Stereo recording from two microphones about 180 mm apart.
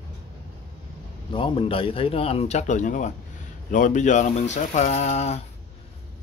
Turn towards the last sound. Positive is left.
turn(degrees=40)  # may be behind; listen again after turning